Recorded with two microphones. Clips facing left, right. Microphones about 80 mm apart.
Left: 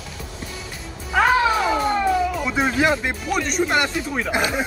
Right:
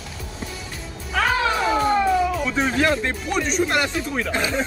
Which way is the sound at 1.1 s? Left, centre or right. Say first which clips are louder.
Left 4 dB; centre.